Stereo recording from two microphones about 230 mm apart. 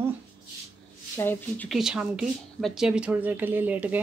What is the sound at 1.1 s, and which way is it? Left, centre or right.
Speech, centre.